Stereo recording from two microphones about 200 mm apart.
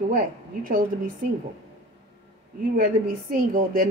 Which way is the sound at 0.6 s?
45° right (ahead or behind).